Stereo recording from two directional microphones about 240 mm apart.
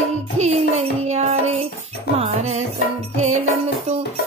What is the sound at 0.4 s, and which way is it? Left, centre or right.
Music, right.